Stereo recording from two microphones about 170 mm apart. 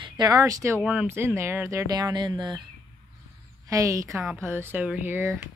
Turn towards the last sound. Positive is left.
turn(degrees=-15)  # may be behind; listen again after turning